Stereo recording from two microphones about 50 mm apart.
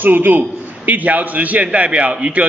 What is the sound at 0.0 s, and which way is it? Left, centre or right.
A man's voice, right.